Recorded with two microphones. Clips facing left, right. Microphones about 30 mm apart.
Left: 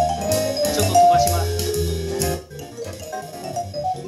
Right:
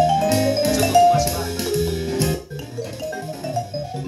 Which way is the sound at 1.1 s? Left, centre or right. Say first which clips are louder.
Left 2 dB; centre.